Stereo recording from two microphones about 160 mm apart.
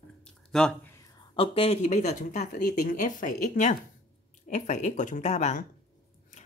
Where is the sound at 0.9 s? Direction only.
20° left (ahead or behind).